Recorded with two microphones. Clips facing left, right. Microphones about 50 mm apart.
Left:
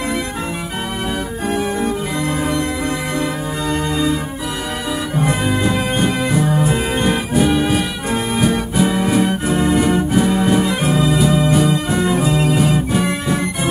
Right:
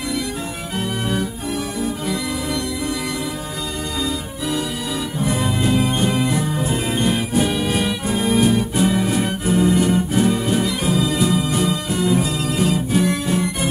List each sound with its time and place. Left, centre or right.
5.7 s music: left
6.7 s music: left
7.4 s music: centre
9.5 s organ: left
11.6 s music: left